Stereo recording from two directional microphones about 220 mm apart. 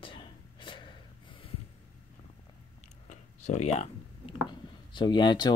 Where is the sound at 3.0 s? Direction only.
30° left (ahead or behind).